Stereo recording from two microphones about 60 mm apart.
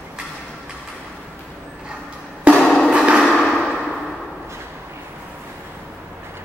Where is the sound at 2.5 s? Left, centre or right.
Right.